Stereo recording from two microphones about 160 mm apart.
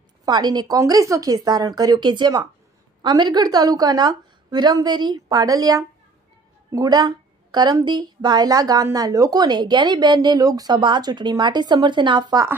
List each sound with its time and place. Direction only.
0.2 s a woman's voice: 25° right (ahead or behind)